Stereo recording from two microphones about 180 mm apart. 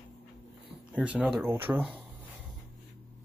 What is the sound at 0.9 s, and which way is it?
Speech, 5° right (ahead or behind).